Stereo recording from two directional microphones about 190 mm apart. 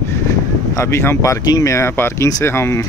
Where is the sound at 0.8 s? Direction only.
15° left (ahead or behind).